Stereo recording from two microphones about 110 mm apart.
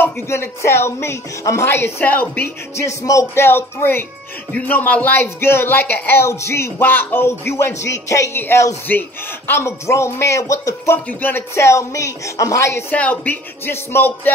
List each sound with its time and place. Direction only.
0.0 s speech: 25° left (ahead or behind)
11.1 s speech: 15° left (ahead or behind)
12.9 s speech: 15° left (ahead or behind)